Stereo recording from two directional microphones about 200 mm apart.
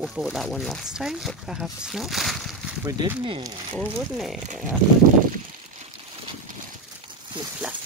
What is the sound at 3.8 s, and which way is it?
Speech, centre (ahead or behind).